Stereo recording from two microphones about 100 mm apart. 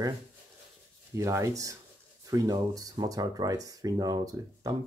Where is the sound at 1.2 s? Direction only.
30° right (ahead or behind).